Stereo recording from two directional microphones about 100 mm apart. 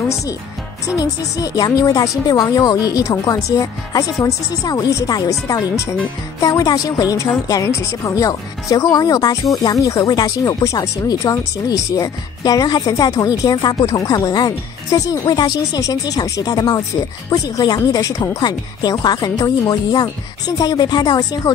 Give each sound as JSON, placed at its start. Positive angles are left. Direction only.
{"t": 0.9, "sound": "speech", "side_deg": 40}
{"t": 5.5, "sound": "speech", "side_deg": 30}